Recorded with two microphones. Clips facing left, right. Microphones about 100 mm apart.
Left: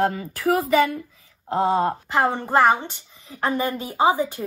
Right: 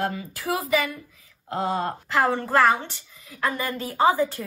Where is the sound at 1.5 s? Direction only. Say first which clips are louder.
Left 6 dB; 25° left (ahead or behind).